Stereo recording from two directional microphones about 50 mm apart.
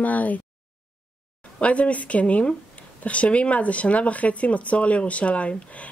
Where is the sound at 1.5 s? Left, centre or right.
Left.